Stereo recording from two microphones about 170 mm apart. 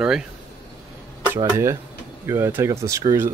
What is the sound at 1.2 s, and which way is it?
Speech, 15° right (ahead or behind).